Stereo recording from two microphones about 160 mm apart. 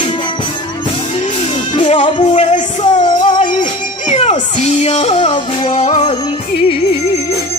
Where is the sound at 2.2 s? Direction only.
50° left (ahead or behind).